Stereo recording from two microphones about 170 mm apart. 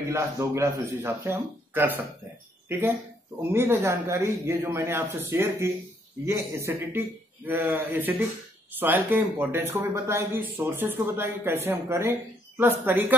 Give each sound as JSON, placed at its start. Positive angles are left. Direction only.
{"t": 0.1, "sound": "speech", "side_deg": -15}
{"t": 3.5, "sound": "speech", "side_deg": -15}